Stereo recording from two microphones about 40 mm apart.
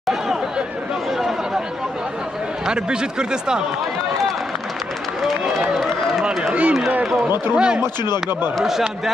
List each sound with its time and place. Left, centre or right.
0.0 s chatter: centre
2.6 s speech: centre
6.5 s a man's voice: right
7.5 s speech: right